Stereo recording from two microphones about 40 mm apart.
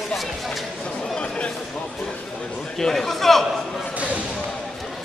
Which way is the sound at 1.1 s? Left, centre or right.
Left.